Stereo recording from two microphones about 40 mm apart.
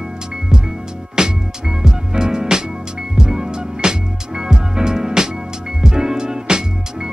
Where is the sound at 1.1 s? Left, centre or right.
Centre.